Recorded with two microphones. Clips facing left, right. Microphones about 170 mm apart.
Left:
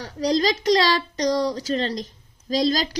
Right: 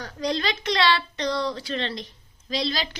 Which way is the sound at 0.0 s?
35° left (ahead or behind).